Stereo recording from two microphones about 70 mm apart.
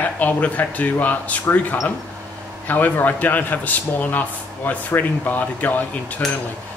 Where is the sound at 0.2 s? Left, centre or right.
Left.